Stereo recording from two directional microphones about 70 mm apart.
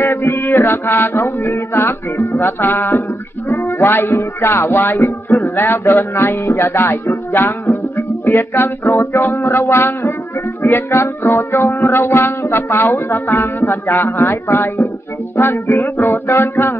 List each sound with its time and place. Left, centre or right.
0.0 s music: left